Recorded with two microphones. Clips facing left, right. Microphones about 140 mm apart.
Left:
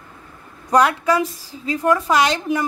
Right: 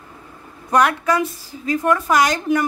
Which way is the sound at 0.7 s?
30° left (ahead or behind).